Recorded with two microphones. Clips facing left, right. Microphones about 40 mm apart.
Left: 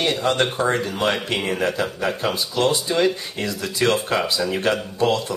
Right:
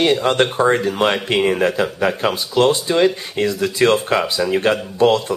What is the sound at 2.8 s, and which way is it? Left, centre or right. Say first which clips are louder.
Speech: right 4 dB; right.